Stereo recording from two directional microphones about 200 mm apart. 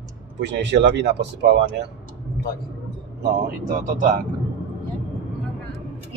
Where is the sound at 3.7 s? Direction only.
45° right (ahead or behind).